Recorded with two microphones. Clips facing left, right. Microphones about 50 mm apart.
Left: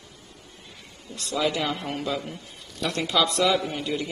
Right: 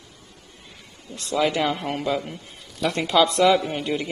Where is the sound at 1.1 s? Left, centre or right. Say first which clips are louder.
Right 4 dB; right.